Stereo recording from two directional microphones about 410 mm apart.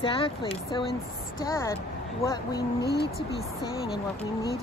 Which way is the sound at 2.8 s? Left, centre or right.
Left.